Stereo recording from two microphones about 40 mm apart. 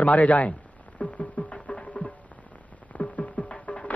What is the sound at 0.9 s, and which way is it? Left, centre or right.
Music, left.